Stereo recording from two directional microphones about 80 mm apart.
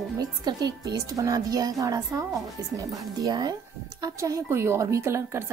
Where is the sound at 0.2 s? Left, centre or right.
Right.